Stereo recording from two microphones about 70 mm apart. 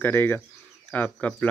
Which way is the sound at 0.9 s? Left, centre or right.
Left.